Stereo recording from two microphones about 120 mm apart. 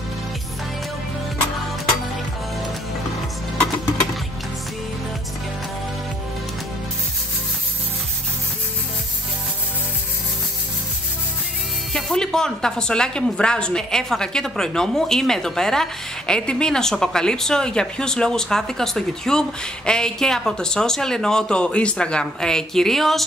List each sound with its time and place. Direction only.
11.9 s speech: 5° left (ahead or behind)